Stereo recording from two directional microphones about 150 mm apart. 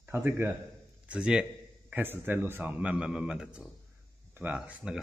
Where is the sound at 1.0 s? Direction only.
5° right (ahead or behind).